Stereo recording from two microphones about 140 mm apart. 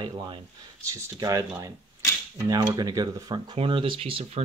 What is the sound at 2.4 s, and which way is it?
Speech, 25° right (ahead or behind).